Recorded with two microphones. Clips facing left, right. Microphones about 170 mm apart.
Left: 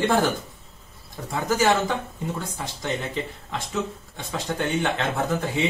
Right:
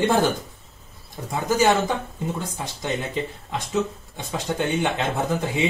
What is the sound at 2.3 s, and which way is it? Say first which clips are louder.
A man's voice: right 1 dB; 20° right (ahead or behind).